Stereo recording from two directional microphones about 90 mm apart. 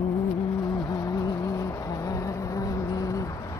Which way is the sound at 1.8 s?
40° left (ahead or behind).